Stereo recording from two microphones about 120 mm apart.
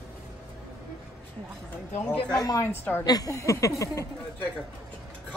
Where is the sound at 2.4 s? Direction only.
25° left (ahead or behind).